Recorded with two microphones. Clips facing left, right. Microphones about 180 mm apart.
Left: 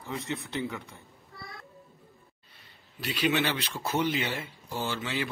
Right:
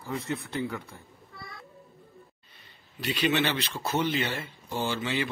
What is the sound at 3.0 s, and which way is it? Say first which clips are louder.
Speech: right 1 dB; 5° left (ahead or behind).